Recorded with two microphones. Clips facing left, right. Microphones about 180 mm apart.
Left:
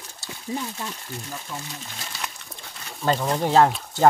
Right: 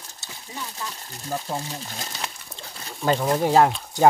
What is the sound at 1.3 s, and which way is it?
Speech, 45° right (ahead or behind).